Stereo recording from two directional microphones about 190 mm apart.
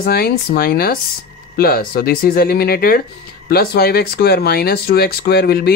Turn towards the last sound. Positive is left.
turn(degrees=55)  # may be behind; listen again after turning